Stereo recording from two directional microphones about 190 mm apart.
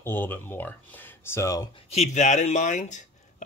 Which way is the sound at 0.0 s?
10° left (ahead or behind).